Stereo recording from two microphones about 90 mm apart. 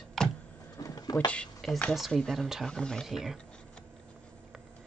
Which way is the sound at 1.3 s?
15° left (ahead or behind).